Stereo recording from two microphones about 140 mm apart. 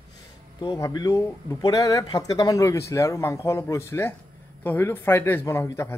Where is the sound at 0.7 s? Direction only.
25° left (ahead or behind).